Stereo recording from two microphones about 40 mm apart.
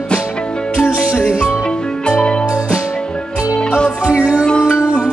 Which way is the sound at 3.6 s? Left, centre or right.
Left.